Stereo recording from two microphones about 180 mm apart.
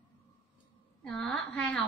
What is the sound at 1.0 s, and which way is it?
Speech, 5° left (ahead or behind).